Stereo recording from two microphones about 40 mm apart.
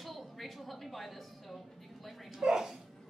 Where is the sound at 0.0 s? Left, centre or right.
Centre.